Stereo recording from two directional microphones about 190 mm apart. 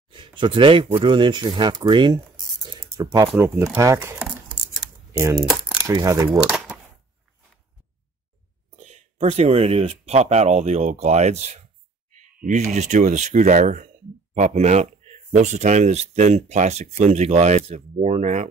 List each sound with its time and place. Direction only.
0.1 s a sound: 25° right (ahead or behind)
1.0 s speech: 25° right (ahead or behind)
2.3 s typing: centre (ahead or behind)
2.7 s speech: 20° right (ahead or behind)
3.3 s speech: 10° right (ahead or behind)
4.8 s a sound: centre (ahead or behind)
5.9 s speech: 15° right (ahead or behind)
6.3 s a sound: 5° right (ahead or behind)
8.7 s speech: 35° right (ahead or behind)
12.7 s speech: 40° right (ahead or behind)